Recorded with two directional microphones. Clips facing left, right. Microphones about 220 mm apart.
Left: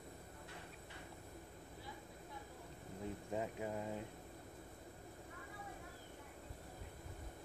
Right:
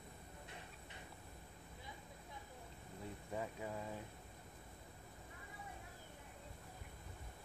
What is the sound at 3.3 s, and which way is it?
Speech, 20° left (ahead or behind).